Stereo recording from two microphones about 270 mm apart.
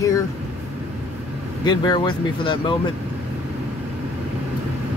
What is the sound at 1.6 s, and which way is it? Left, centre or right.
Speech, centre.